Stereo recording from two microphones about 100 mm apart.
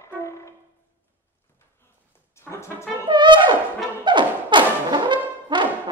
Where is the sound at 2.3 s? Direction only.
25° left (ahead or behind).